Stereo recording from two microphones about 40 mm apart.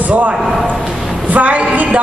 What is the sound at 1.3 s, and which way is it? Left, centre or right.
Speech, right.